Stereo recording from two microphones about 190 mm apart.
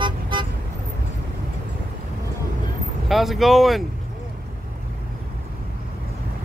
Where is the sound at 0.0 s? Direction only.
25° right (ahead or behind).